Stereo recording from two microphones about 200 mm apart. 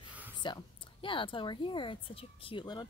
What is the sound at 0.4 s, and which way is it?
Speech, 25° left (ahead or behind).